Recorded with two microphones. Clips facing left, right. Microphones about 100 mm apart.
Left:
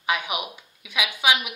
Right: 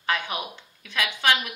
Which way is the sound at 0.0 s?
10° left (ahead or behind).